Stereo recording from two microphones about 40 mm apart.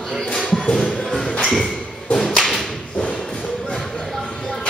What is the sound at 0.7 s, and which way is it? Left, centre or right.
Music, centre.